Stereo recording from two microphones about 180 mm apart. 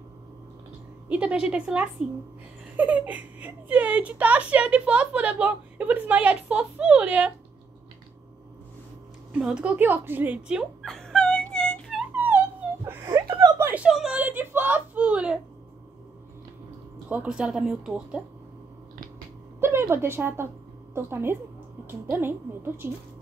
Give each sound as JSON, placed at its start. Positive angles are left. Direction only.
{"t": 1.0, "sound": "speech", "side_deg": -5}
{"t": 9.3, "sound": "speech", "side_deg": -5}
{"t": 12.8, "sound": "a sound", "side_deg": -20}
{"t": 13.7, "sound": "a sound", "side_deg": -5}
{"t": 17.1, "sound": "speech", "side_deg": -5}
{"t": 19.6, "sound": "speech", "side_deg": -15}